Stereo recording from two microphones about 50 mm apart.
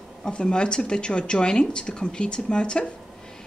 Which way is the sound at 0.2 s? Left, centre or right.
Centre.